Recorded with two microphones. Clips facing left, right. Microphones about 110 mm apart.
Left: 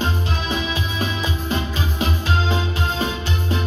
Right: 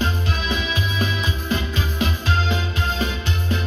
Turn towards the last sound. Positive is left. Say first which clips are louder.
# left 1 dB
turn(degrees=35)  # may be behind; listen again after turning